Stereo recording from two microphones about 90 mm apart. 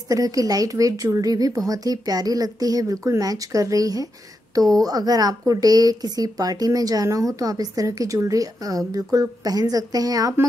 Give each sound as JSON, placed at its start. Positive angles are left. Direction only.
{"t": 0.1, "sound": "a woman's voice", "side_deg": -40}